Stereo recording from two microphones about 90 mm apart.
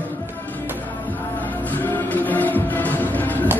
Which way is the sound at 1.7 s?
20° left (ahead or behind).